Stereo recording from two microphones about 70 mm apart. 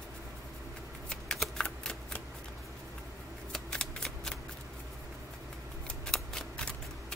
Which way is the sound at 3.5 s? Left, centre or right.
Centre.